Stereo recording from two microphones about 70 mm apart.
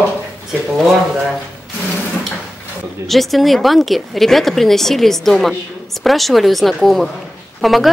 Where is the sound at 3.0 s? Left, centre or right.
Centre.